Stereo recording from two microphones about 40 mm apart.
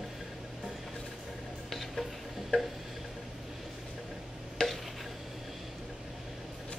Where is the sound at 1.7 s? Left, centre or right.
Centre.